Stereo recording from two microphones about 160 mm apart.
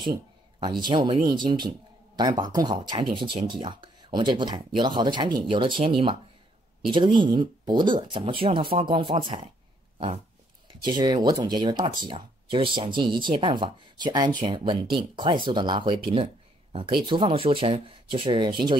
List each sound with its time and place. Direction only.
0.0 s speech: 30° right (ahead or behind)
9.9 s dog: 35° right (ahead or behind)
10.9 s speech: 30° right (ahead or behind)